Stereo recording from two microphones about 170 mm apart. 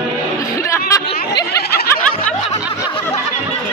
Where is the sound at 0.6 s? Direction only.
20° left (ahead or behind).